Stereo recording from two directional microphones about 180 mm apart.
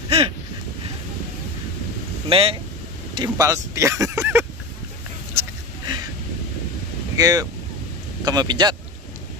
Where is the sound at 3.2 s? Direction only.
20° right (ahead or behind).